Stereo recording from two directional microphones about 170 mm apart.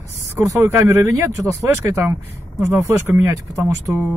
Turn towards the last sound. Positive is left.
turn(degrees=-10)  # may be behind; listen again after turning